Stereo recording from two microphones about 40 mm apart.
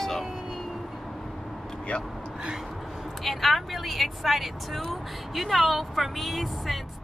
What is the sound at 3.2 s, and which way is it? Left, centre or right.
Speech, centre.